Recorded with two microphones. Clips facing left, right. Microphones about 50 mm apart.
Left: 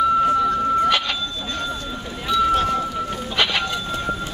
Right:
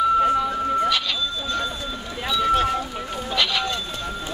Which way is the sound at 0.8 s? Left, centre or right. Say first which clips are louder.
Left 3 dB; left.